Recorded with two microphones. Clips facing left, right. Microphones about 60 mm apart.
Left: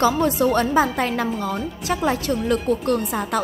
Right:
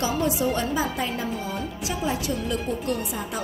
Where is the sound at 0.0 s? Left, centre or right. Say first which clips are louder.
Left 6 dB; left.